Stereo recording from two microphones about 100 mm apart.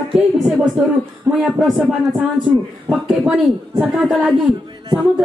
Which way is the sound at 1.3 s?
20° right (ahead or behind).